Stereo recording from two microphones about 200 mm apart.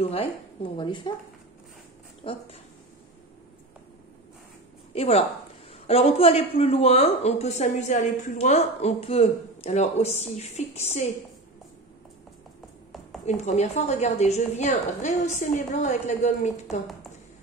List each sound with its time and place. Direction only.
0.0 s speech: 30° left (ahead or behind)
2.2 s speech: 25° left (ahead or behind)
4.9 s a woman's voice: 30° left (ahead or behind)
13.2 s speech: 35° left (ahead or behind)